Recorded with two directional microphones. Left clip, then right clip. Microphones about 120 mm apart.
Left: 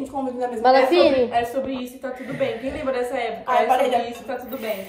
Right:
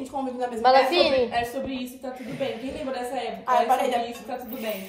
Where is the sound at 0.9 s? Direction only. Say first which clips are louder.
Left 4 dB; 20° right (ahead or behind).